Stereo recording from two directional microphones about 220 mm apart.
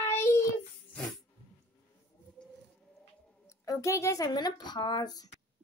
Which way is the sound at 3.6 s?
15° left (ahead or behind).